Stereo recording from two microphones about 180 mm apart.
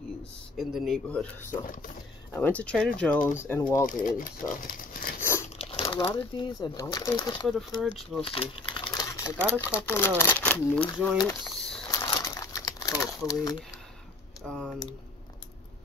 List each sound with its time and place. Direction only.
0.6 s speech: centre (ahead or behind)
3.8 s speech: 45° left (ahead or behind)
5.6 s speech: 30° left (ahead or behind)
7.4 s speech: centre (ahead or behind)
8.2 s crumpling: 30° left (ahead or behind)
9.8 s speech: 10° left (ahead or behind)
11.2 s a sound: 5° left (ahead or behind)
11.9 s crumpling: 20° left (ahead or behind)
14.4 s speech: 5° left (ahead or behind)